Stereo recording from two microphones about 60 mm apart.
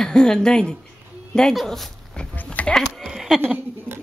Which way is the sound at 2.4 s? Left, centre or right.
Centre.